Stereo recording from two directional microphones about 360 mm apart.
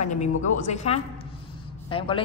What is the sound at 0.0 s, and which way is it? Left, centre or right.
A woman's voice, centre.